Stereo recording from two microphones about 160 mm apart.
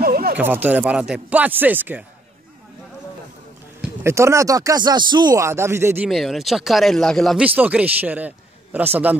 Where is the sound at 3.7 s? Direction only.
15° right (ahead or behind).